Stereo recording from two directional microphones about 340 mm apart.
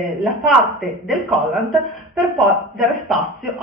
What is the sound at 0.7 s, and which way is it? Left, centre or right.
Speech, centre.